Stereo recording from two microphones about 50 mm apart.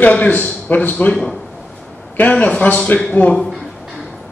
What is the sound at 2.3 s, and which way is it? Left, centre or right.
A man's voice, left.